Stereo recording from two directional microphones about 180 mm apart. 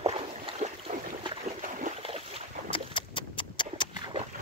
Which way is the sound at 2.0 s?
30° right (ahead or behind).